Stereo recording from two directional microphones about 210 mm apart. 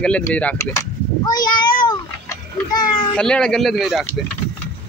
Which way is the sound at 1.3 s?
20° left (ahead or behind).